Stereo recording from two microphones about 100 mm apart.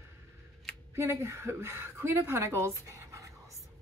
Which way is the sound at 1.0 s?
25° right (ahead or behind).